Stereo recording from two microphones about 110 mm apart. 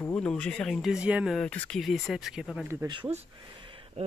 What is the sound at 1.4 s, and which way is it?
Speech, 10° left (ahead or behind).